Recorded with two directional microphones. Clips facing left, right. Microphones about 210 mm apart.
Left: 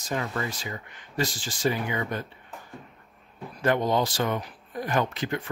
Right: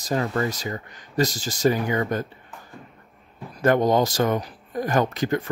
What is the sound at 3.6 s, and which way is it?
Speech, 45° right (ahead or behind).